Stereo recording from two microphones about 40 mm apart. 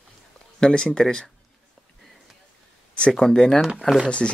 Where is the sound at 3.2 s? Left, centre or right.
Centre.